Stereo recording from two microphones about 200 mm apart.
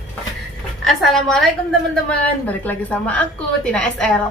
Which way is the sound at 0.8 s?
Centre (ahead or behind).